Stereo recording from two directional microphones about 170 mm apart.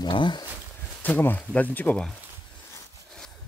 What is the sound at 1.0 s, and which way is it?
Speech, 10° left (ahead or behind).